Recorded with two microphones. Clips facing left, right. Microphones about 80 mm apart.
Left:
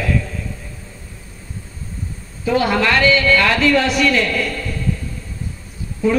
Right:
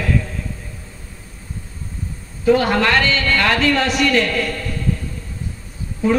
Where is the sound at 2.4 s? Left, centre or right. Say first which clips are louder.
Right 2 dB; right.